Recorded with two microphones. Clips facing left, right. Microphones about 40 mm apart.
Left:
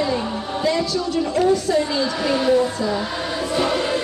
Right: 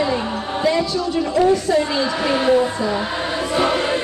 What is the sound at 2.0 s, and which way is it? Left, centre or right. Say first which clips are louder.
Music: right 1 dB; right.